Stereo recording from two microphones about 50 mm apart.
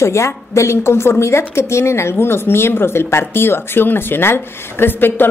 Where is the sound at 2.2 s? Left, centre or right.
Left.